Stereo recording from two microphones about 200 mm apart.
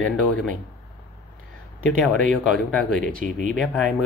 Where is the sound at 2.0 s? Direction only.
Centre (ahead or behind).